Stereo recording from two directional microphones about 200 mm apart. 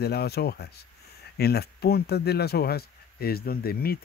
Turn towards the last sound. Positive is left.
turn(degrees=50)  # may be behind; listen again after turning